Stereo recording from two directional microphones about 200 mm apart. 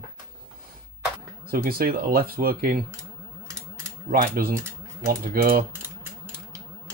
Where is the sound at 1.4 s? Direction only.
45° right (ahead or behind).